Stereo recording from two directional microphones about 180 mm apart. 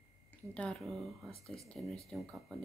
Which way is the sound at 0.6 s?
5° left (ahead or behind).